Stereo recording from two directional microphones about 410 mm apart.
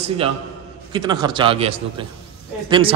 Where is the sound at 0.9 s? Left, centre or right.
Centre.